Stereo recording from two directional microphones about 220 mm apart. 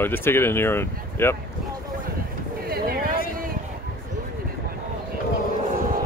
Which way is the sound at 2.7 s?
40° right (ahead or behind).